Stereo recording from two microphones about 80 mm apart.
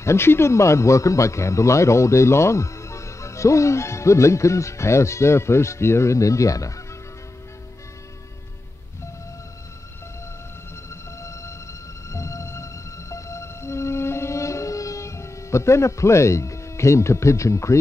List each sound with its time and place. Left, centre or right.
0.0 s speech: left
10.9 s train: left
12.1 s music: left